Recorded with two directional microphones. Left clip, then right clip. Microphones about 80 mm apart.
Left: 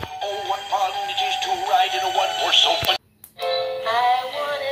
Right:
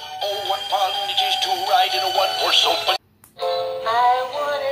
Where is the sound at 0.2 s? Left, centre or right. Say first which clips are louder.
Right 3 dB; right.